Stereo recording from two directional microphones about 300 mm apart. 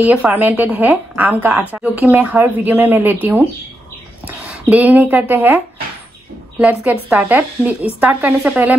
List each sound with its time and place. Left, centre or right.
0.0 s speech: centre
6.6 s speech: centre